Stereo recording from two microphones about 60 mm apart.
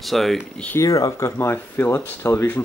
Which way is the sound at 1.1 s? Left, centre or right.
Left.